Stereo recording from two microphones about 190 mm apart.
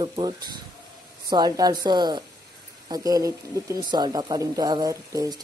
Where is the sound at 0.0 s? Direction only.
20° right (ahead or behind).